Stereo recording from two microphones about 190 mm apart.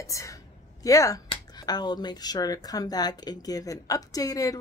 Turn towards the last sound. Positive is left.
turn(degrees=20)  # may be behind; listen again after turning